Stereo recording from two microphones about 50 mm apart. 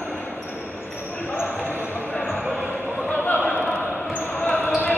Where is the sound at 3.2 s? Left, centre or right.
Left.